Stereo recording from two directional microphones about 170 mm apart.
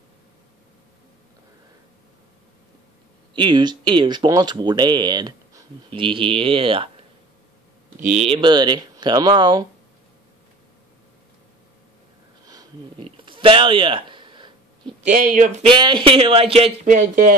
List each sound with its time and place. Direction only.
3.3 s speech: 25° right (ahead or behind)
8.0 s speech: 40° right (ahead or behind)
13.2 s a sound: 30° right (ahead or behind)
15.0 s speech: 50° right (ahead or behind)
15.7 s speech: 25° right (ahead or behind)
16.8 s speech: 50° right (ahead or behind)